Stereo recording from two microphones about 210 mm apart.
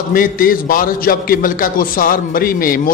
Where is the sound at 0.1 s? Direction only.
40° left (ahead or behind).